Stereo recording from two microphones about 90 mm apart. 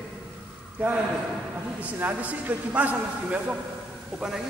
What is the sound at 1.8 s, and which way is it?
A man's voice, 15° right (ahead or behind).